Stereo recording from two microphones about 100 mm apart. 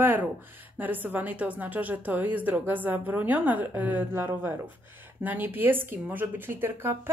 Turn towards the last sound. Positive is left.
turn(degrees=-20)  # may be behind; listen again after turning